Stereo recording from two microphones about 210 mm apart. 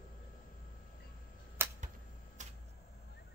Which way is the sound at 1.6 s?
10° right (ahead or behind).